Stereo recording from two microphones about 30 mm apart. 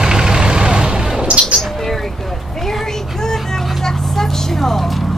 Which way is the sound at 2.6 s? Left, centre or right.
Centre.